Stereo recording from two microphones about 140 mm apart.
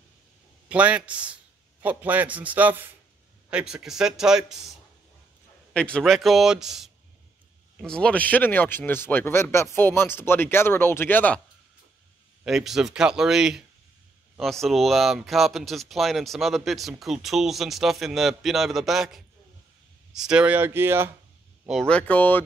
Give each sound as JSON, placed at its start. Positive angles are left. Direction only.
{"t": 0.7, "sound": "a man's voice", "side_deg": -10}
{"t": 5.7, "sound": "speech", "side_deg": 10}
{"t": 12.4, "sound": "a man's voice", "side_deg": 0}
{"t": 21.6, "sound": "speech", "side_deg": 5}